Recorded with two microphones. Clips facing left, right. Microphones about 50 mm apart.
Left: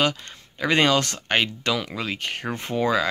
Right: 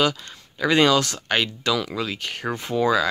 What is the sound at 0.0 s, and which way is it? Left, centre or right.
Speech, left.